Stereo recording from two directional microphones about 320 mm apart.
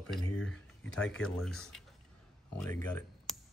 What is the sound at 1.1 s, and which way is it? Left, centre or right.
Speech, centre.